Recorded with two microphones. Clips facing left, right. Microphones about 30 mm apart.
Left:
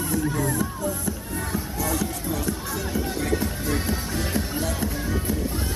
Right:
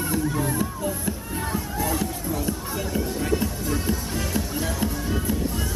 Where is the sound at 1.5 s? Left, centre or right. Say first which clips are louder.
Right 1 dB; right.